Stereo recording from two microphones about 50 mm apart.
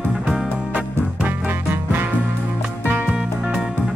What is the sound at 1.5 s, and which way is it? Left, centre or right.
Music, right.